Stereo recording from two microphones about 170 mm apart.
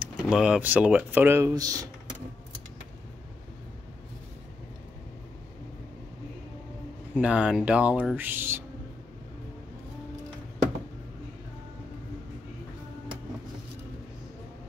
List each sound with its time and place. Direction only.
0.0 s speech: 5° right (ahead or behind); by 1.9 s 20° right (ahead or behind)
7.2 s speech: 5° right (ahead or behind)